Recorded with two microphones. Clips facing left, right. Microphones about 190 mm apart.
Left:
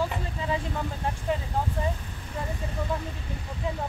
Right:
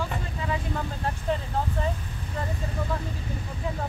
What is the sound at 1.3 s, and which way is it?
Speech, 10° left (ahead or behind).